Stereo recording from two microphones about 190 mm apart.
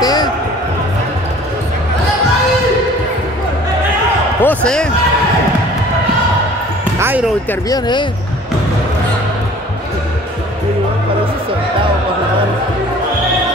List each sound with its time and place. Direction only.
0.0 s basketball bounce: 20° left (ahead or behind)
4.4 s speech: 5° left (ahead or behind)
7.0 s music: 10° right (ahead or behind)
7.7 s speech: 25° left (ahead or behind)